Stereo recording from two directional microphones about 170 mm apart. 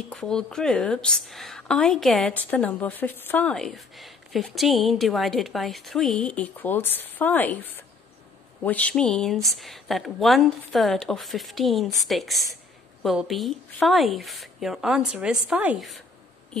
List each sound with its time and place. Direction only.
0.1 s a woman's voice: 5° left (ahead or behind)